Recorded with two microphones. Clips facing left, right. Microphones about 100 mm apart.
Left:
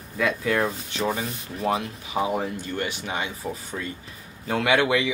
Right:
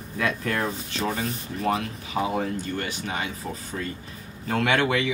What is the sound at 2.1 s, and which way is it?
Speech, 15° left (ahead or behind).